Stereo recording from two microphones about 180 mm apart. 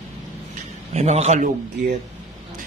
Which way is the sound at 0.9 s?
40° right (ahead or behind).